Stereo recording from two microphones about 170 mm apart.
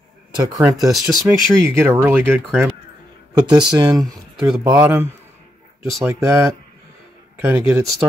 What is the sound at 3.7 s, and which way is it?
Speech, 25° right (ahead or behind).